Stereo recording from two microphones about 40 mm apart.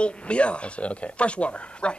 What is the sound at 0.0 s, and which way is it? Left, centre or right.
Speech, left.